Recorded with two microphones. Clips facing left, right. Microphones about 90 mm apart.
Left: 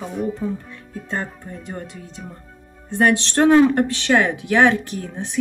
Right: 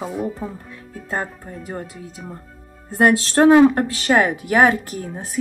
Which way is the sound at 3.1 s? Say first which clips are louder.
Right 2 dB; 35° right (ahead or behind).